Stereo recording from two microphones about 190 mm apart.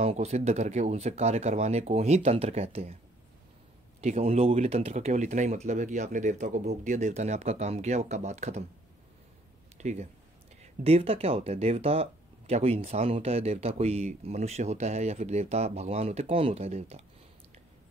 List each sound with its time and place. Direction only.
0.0 s speech: 35° right (ahead or behind)
4.0 s speech: 35° right (ahead or behind)
9.8 s speech: 35° right (ahead or behind)